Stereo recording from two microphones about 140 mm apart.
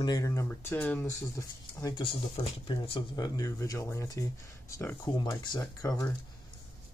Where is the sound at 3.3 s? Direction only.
25° left (ahead or behind).